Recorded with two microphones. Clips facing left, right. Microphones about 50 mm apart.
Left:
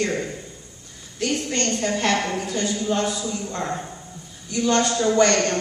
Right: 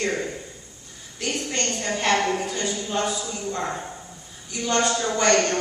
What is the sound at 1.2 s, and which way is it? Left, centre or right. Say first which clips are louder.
A woman's voice: left 3 dB; centre.